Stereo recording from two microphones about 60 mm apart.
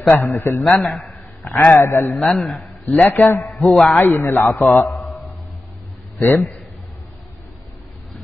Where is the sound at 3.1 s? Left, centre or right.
Left.